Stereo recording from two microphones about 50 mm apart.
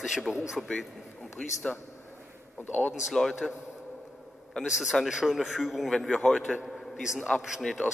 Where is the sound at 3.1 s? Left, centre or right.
Centre.